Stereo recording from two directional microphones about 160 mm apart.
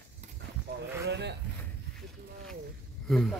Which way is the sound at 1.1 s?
90° right.